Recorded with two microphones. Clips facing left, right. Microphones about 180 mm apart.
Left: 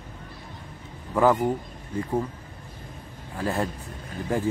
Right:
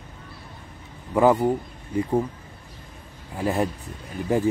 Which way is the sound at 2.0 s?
15° right (ahead or behind).